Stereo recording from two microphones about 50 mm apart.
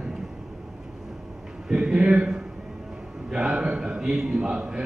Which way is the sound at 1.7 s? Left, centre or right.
Centre.